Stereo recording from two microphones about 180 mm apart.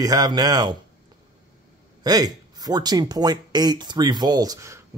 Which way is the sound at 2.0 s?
20° right (ahead or behind).